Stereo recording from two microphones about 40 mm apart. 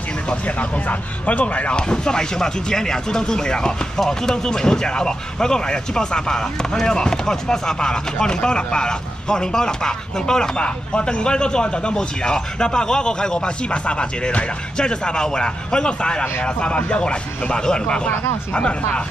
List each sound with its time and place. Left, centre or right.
0.3 s speech: left